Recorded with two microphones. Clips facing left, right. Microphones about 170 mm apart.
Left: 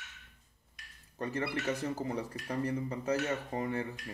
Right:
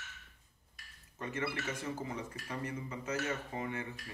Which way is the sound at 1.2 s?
35° left (ahead or behind).